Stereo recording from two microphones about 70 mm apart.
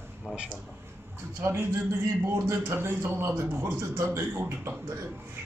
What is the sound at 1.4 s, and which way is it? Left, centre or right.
A man's voice, right.